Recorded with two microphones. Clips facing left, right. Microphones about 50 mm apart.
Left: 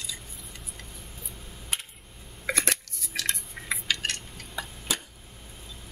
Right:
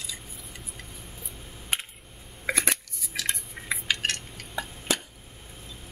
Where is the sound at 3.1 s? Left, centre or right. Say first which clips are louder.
Even; centre.